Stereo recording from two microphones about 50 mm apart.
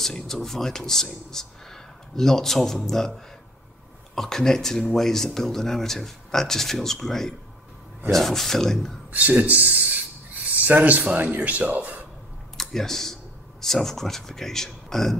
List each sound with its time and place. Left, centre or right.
0.0 s a man's voice: centre
9.1 s speech: right
12.5 s speech: centre